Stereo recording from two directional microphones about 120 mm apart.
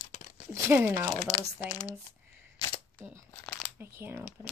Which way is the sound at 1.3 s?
35° left (ahead or behind).